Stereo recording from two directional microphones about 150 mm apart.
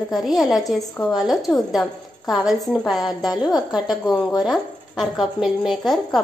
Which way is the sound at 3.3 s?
25° left (ahead or behind).